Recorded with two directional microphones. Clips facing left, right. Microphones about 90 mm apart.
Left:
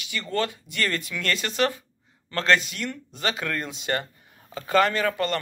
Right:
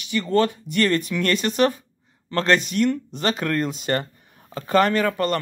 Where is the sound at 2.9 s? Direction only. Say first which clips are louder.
Right 5 dB; 35° right (ahead or behind).